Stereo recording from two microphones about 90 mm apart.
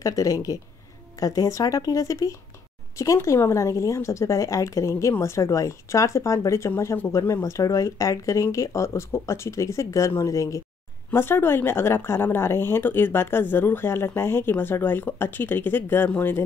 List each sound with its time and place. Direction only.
0.0 s speech: 40° left (ahead or behind)
11.1 s speech: 25° left (ahead or behind)